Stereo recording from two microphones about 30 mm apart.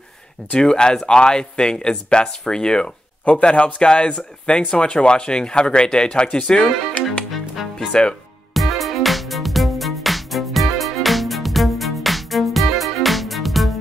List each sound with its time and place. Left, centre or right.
0.5 s speech: left
3.3 s a man's voice: left
7.9 s a man's voice: left
8.5 s music: centre